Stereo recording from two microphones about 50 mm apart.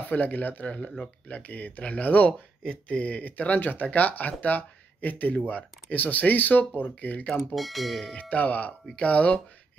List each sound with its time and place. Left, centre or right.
0.0 s speech: left
7.3 s speech: centre
8.2 s speech: left